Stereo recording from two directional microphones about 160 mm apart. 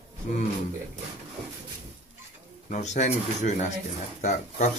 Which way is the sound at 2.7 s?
45° left (ahead or behind).